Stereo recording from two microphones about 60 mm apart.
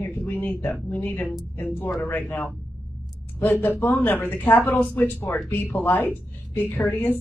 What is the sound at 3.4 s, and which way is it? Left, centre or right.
A man's voice, left.